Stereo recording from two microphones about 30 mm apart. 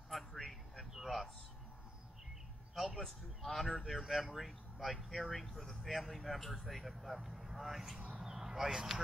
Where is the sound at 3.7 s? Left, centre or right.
Centre.